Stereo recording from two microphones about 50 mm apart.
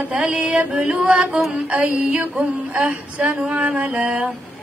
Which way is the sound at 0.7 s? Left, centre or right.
Centre.